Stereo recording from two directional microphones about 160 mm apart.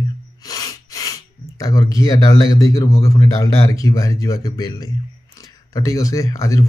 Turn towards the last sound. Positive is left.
turn(degrees=20)  # may be behind; listen again after turning